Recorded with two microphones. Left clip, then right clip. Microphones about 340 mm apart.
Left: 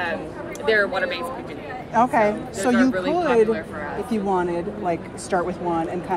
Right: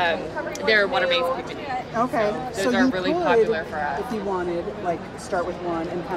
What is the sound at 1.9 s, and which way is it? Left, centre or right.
Speech, left.